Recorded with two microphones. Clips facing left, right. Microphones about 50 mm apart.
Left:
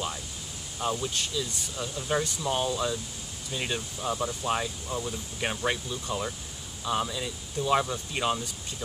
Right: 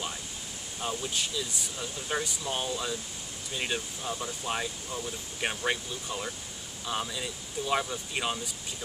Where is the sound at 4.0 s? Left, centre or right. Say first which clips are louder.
Left 5 dB; left.